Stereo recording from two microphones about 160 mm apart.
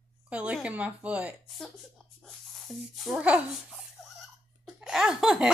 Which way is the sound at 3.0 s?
5° right (ahead or behind).